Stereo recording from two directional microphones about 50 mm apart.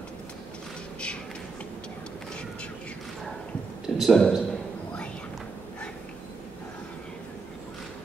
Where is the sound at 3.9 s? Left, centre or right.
Centre.